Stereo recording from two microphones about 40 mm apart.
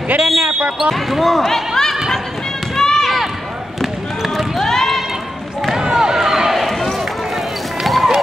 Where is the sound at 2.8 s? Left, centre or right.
Centre.